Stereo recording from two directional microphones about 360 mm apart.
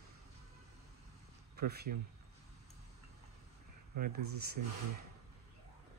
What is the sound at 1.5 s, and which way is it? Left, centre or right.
Speech, right.